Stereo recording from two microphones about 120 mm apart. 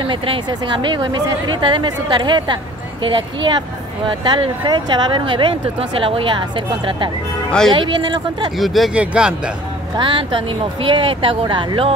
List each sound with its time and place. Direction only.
0.0 s speech: 45° right (ahead or behind)
8.5 s a man's voice: centre (ahead or behind)
9.9 s speech: 45° right (ahead or behind)